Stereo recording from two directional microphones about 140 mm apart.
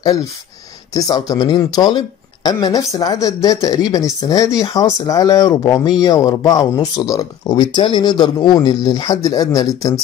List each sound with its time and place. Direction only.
0.0 s speech: 25° left (ahead or behind)